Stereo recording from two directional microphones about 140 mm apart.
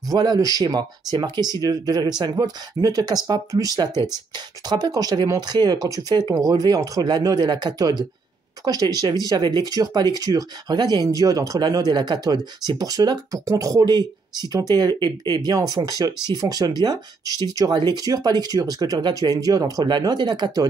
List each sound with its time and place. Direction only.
0.1 s speech: 30° right (ahead or behind)